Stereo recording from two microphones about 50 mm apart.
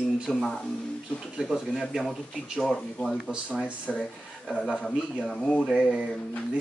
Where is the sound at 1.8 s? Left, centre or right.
Centre.